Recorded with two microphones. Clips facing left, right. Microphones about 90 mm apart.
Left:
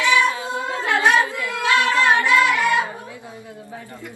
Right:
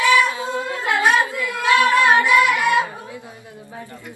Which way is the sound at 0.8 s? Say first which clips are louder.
Even; 20° right (ahead or behind).